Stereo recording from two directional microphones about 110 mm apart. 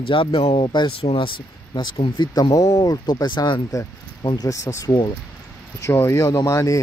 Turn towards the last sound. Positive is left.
turn(degrees=30)  # may be behind; listen again after turning